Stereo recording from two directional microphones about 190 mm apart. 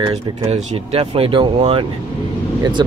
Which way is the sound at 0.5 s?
30° right (ahead or behind).